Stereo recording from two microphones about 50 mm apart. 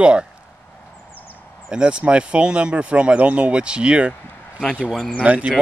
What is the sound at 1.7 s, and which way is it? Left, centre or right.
Speech, centre.